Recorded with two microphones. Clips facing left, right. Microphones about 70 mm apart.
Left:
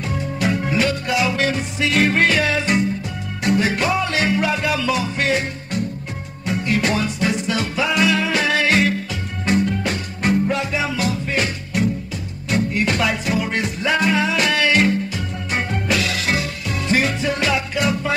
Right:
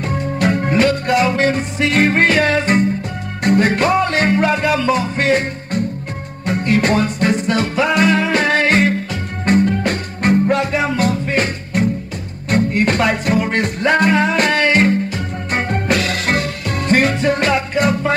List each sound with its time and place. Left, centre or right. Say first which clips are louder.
0.0 s music: right 4 dB; right